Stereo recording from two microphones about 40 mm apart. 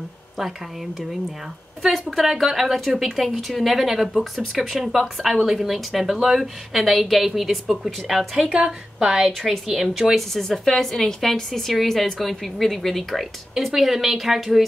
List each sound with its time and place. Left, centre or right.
2.2 s a woman's voice: centre
8.4 s a woman's voice: right
9.0 s a woman's voice: centre
10.3 s a woman's voice: centre